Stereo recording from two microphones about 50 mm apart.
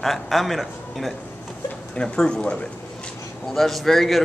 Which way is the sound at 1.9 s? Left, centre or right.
Centre.